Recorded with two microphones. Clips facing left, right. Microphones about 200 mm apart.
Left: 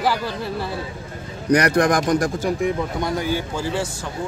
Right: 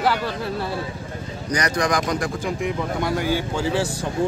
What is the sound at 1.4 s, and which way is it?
A man's voice, 60° left (ahead or behind).